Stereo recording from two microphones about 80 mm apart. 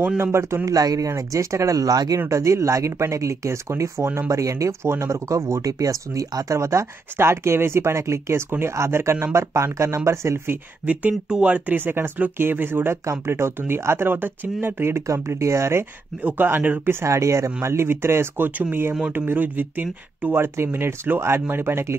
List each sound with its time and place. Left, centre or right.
0.2 s speech: right
0.7 s speech: right
2.1 s speech: right
13.0 s speech: right
16.3 s speech: right
17.0 s speech: right